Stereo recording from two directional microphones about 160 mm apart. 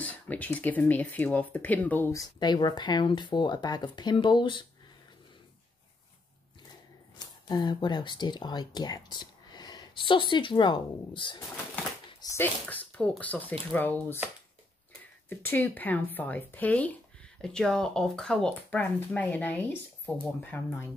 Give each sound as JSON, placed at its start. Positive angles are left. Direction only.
{"t": 0.0, "sound": "speech", "side_deg": 10}
{"t": 2.4, "sound": "speech", "side_deg": 25}
{"t": 7.2, "sound": "speech", "side_deg": 25}
{"t": 12.1, "sound": "a sound", "side_deg": 25}
{"t": 12.4, "sound": "speech", "side_deg": 10}
{"t": 15.2, "sound": "speech", "side_deg": 10}